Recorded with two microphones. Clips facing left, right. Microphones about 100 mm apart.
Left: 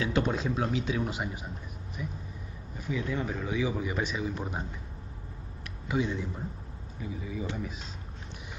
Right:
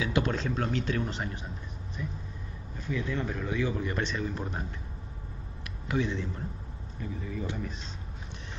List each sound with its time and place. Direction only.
0.2 s speech: 10° left (ahead or behind)
2.0 s vehicle: 10° left (ahead or behind)
2.8 s speech: 10° left (ahead or behind)
5.9 s speech: 10° left (ahead or behind)